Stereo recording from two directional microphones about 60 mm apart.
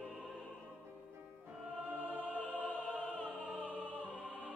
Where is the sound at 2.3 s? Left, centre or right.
Left.